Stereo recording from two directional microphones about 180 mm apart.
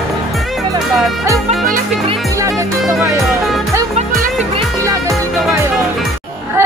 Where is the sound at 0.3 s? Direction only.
Centre (ahead or behind).